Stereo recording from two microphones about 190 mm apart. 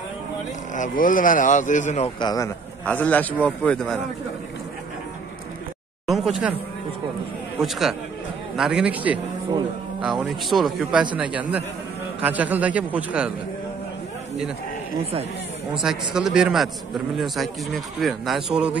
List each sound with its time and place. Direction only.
0.7 s speech: 45° left (ahead or behind)
2.1 s a man's voice: 20° left (ahead or behind)
2.8 s a man's voice: 10° left (ahead or behind)
6.0 s a man's voice: centre (ahead or behind)
8.5 s a man's voice: 5° right (ahead or behind)
15.7 s a man's voice: 5° right (ahead or behind)